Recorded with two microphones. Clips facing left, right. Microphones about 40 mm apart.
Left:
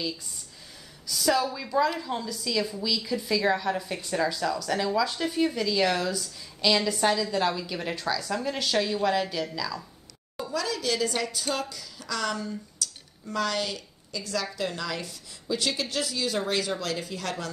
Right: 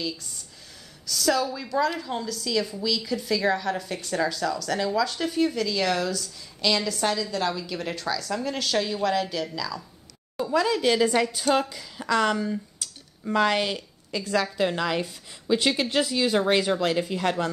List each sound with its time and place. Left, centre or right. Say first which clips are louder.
1.0 s a woman's voice: right 1 dB; centre
10.5 s a woman's voice: right 7 dB; right